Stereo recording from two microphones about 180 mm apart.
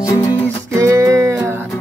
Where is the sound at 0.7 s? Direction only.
15° right (ahead or behind).